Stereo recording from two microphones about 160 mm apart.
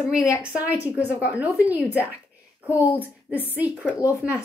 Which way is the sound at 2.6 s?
15° left (ahead or behind).